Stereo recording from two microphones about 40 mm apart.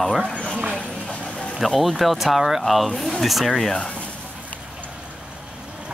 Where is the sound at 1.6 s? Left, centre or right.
Centre.